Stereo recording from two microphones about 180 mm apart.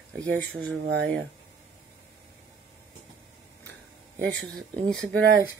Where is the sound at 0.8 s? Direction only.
70° right (ahead or behind).